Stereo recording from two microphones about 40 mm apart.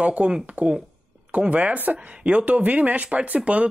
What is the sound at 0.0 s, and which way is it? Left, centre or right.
Speech, right.